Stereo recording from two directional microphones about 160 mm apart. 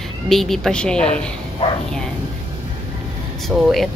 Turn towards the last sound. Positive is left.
turn(degrees=0)  # may be behind; listen again after turning